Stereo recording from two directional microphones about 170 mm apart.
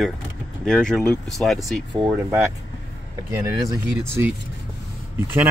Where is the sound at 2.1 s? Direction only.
10° right (ahead or behind).